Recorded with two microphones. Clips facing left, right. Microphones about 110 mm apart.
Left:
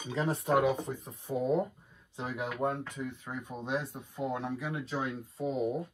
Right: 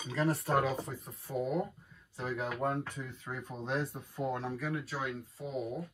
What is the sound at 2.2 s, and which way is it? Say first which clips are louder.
Speech: left 1 dB; 20° left (ahead or behind).